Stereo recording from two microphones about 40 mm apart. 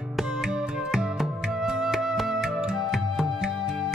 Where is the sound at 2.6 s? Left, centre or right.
Centre.